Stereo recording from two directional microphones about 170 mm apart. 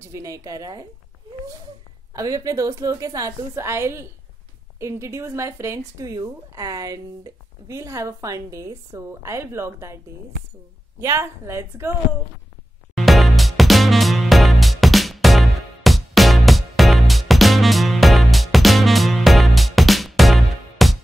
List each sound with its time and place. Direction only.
0.1 s a woman's voice: 20° right (ahead or behind)
2.1 s a woman's voice: 20° right (ahead or behind)
11.0 s speech: 15° right (ahead or behind)
12.9 s music: centre (ahead or behind)